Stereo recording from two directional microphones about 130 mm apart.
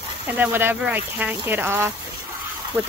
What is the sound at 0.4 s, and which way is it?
Speech, 15° right (ahead or behind).